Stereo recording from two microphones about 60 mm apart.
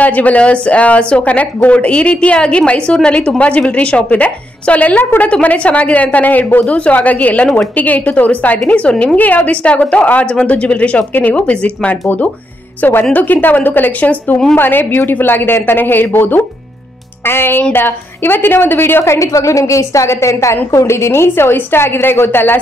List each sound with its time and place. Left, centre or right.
0.0 s a woman's voice: left
19.1 s a woman's voice: left